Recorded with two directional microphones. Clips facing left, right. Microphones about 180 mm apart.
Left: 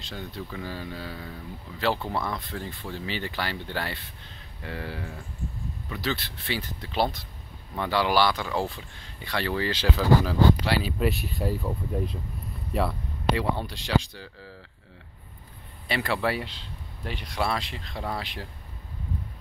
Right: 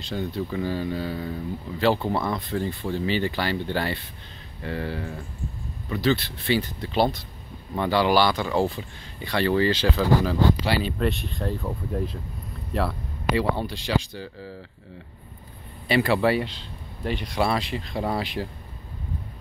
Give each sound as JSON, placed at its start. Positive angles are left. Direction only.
{"t": 0.0, "sound": "speech", "side_deg": -5}
{"t": 2.0, "sound": "speech", "side_deg": -25}
{"t": 2.3, "sound": "speech", "side_deg": 0}
{"t": 15.9, "sound": "speech", "side_deg": -5}